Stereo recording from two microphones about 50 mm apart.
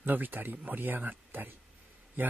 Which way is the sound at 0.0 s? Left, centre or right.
Right.